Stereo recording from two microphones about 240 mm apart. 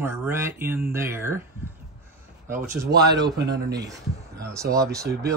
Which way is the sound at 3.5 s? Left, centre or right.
Right.